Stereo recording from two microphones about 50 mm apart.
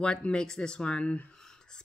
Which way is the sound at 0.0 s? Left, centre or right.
Centre.